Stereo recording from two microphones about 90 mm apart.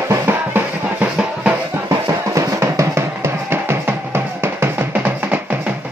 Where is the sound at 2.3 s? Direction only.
35° right (ahead or behind); by 5.3 s 20° right (ahead or behind).